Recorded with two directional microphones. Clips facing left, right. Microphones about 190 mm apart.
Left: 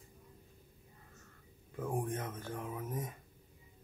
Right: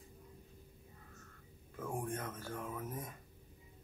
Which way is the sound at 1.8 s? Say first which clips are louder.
Left 3 dB; 15° left (ahead or behind).